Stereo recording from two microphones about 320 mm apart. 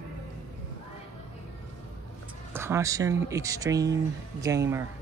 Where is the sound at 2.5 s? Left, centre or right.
Centre.